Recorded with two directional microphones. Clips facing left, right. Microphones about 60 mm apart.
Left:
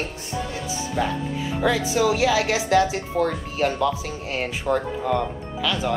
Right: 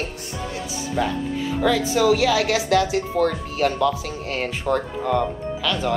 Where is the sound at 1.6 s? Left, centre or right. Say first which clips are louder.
Right 1 dB; centre.